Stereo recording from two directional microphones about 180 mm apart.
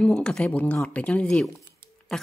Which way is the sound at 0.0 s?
5° left (ahead or behind).